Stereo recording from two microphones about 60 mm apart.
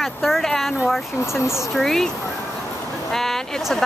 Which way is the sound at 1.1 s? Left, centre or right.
Left.